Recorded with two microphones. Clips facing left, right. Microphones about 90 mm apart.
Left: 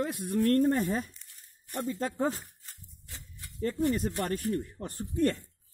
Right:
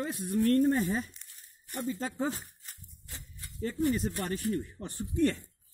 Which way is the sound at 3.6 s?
50° left (ahead or behind).